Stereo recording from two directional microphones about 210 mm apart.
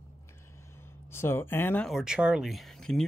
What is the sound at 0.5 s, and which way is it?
Speech, 10° left (ahead or behind).